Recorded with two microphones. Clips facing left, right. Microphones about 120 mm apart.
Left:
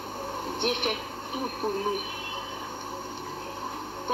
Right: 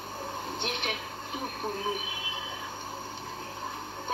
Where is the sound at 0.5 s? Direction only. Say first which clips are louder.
Left 8 dB; 55° left (ahead or behind).